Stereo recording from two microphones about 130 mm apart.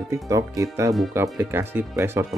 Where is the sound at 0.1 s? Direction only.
25° right (ahead or behind).